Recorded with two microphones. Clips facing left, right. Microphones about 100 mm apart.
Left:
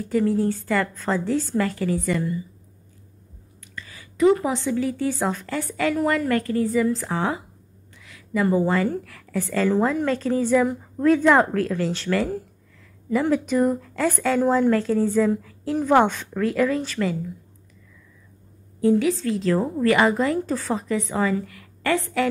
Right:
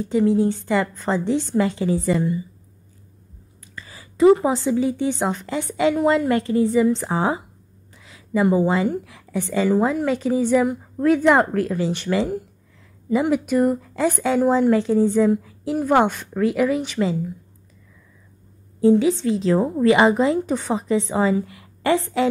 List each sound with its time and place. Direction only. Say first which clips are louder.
0.0 s a woman's voice: right 3 dB; 20° right (ahead or behind)
3.6 s a woman's voice: even; 30° right (ahead or behind)
18.8 s a woman's voice: right 3 dB; 25° right (ahead or behind)